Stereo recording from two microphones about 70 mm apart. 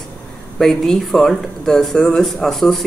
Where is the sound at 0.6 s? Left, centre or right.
Centre.